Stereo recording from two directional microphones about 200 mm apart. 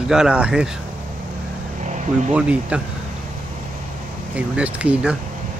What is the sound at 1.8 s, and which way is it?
Vehicle, 35° right (ahead or behind).